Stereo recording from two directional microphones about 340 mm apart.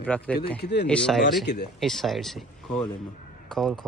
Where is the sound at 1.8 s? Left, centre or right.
Centre.